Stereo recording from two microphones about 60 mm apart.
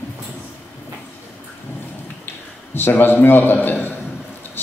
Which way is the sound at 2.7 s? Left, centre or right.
Left.